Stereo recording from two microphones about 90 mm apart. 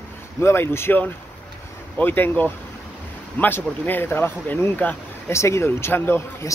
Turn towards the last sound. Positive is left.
turn(degrees=25)  # may be behind; listen again after turning